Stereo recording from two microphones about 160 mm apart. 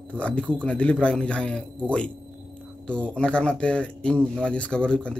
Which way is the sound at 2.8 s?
5° left (ahead or behind).